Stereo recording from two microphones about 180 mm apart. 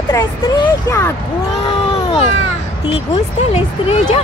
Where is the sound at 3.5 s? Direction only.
35° left (ahead or behind).